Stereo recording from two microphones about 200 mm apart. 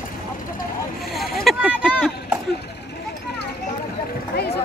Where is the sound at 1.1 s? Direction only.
Centre (ahead or behind).